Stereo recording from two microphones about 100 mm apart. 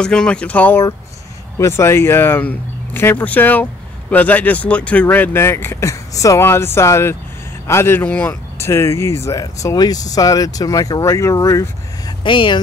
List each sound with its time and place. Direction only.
0.0 s speech: 10° left (ahead or behind)
1.6 s speech: 25° left (ahead or behind)
12.2 s speech: 55° left (ahead or behind)